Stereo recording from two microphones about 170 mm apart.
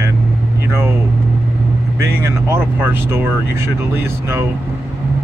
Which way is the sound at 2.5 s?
15° right (ahead or behind).